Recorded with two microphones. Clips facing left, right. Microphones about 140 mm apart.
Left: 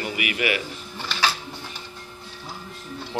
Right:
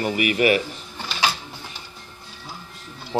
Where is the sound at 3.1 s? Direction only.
30° right (ahead or behind).